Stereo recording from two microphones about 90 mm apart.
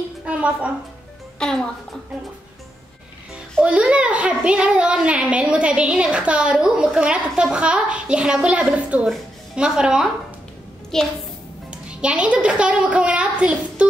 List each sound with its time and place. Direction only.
0.2 s a woman's voice: 15° right (ahead or behind)
1.4 s a woman's voice: 10° left (ahead or behind)
3.6 s a child's voice: 10° right (ahead or behind)
10.9 s a woman's voice: 5° left (ahead or behind)
11.7 s a child's voice: 10° right (ahead or behind)